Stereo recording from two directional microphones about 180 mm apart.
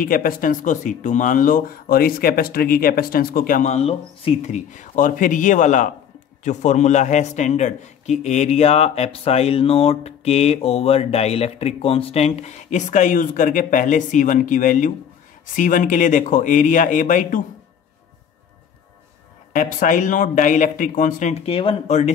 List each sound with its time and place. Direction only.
0.0 s a man's voice: 50° left (ahead or behind)
19.5 s speech: 45° left (ahead or behind)